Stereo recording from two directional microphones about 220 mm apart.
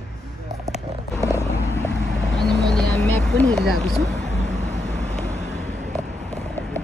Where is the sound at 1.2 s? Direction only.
10° right (ahead or behind).